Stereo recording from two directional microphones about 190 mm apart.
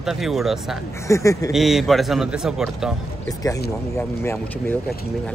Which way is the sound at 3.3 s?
20° left (ahead or behind).